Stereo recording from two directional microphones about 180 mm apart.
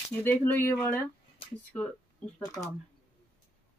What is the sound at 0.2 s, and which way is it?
Speech, 10° left (ahead or behind).